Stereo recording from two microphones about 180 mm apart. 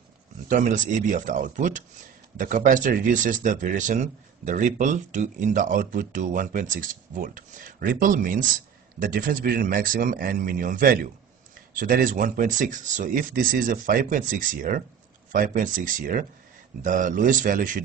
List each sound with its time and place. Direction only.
0.5 s speech: 45° right (ahead or behind)